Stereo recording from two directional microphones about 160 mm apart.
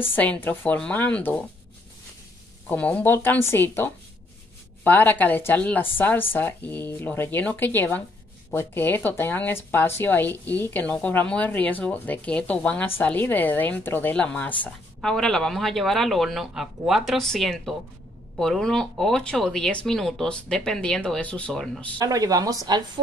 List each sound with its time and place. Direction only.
0.0 s speech: 10° left (ahead or behind)
2.7 s speech: 10° left (ahead or behind)
21.9 s speech: 20° right (ahead or behind)